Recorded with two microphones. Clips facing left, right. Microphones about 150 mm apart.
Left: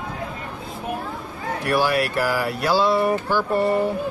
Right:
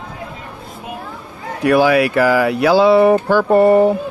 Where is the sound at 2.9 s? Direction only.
70° right (ahead or behind).